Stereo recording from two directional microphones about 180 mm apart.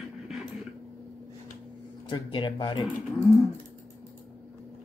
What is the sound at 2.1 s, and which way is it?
Speech, 25° left (ahead or behind).